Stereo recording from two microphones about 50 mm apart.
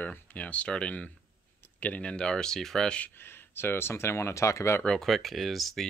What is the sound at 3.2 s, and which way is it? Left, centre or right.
Speech, left.